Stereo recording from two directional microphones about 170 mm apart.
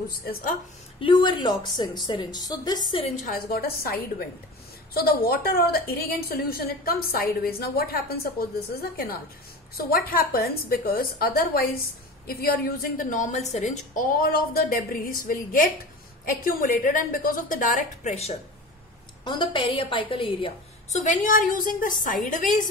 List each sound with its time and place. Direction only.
0.2 s a woman's voice: 55° left (ahead or behind)
0.9 s a woman's voice: 30° left (ahead or behind)
2.9 s a woman's voice: 35° left (ahead or behind); by 3.9 s 65° left (ahead or behind)
4.9 s a woman's voice: 65° left (ahead or behind); by 18.3 s 40° left (ahead or behind)
19.2 s a woman's voice: 30° left (ahead or behind)
21.0 s a woman's voice: 50° left (ahead or behind)